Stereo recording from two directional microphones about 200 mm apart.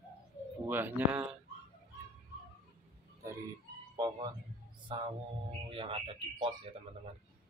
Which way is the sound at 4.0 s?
20° right (ahead or behind).